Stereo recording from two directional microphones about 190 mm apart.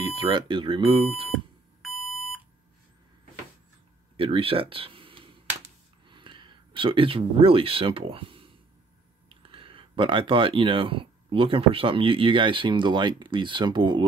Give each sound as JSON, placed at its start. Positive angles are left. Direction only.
{"t": 0.0, "sound": "speech", "side_deg": -25}
{"t": 1.3, "sound": "beep", "side_deg": 0}
{"t": 4.2, "sound": "speech", "side_deg": -30}